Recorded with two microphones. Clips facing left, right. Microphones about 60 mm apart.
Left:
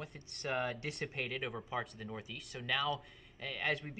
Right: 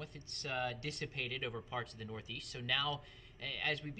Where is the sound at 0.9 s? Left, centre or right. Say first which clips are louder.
Left 3 dB; centre.